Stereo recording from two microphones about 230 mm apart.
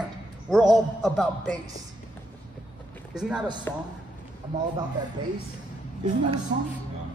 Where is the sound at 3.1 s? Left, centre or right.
Centre.